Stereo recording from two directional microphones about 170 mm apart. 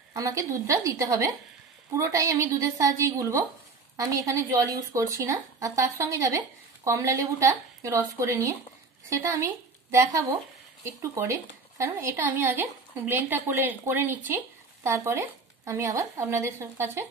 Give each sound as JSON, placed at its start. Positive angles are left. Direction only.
{"t": 0.1, "sound": "a woman's voice", "side_deg": -20}